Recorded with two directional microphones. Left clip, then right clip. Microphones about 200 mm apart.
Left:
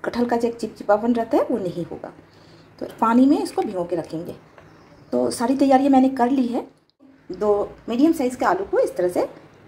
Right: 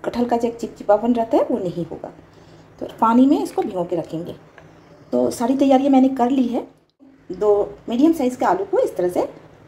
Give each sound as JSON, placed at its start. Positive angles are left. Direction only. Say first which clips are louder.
{"t": 0.0, "sound": "speech", "louder": "right 1 dB", "side_deg": 5}